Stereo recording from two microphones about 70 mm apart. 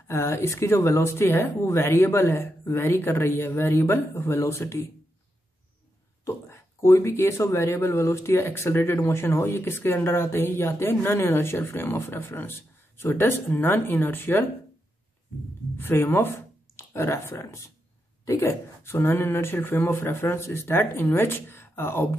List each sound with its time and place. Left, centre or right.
0.1 s speech: left
6.2 s speech: left